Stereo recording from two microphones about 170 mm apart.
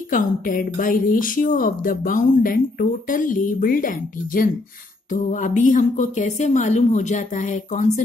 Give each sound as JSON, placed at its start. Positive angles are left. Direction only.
{"t": 0.1, "sound": "speech", "side_deg": 55}